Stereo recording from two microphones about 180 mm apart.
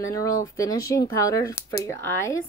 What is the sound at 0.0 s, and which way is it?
Speech, 15° left (ahead or behind).